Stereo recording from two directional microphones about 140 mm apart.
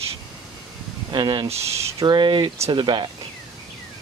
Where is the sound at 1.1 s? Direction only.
35° right (ahead or behind).